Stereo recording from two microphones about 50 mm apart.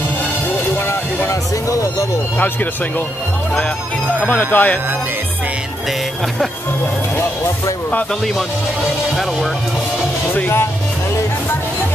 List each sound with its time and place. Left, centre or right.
0.7 s vehicle: left
1.3 s speech: left
2.3 s speech: left
4.3 s speech: left